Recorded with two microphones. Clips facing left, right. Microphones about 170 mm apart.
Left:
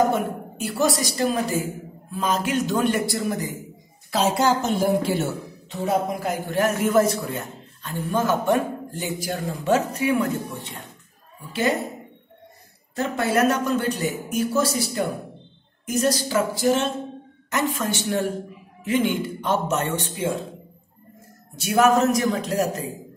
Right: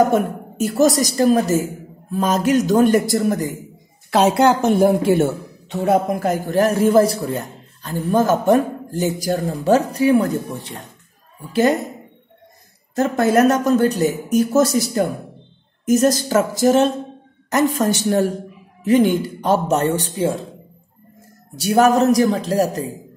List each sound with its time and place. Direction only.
0.1 s a woman's voice: 45° right (ahead or behind)
4.1 s a woman's voice: 65° right (ahead or behind); by 10.7 s 35° right (ahead or behind)
12.9 s a woman's voice: 45° right (ahead or behind)
21.5 s a woman's voice: 35° right (ahead or behind)